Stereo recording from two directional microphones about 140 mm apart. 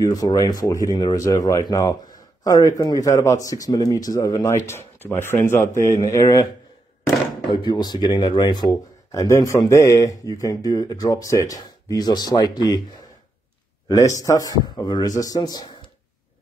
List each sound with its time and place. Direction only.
0.0 s speech: 25° left (ahead or behind)
7.5 s speech: 30° left (ahead or behind)